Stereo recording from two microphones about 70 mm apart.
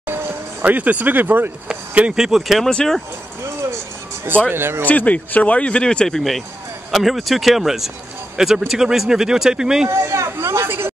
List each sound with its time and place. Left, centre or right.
0.0 s a sound: right
1.7 s speech: centre
2.1 s speech: centre
4.5 s speech: right
4.8 s speech: left; by 9.8 s centre
9.8 s speech: right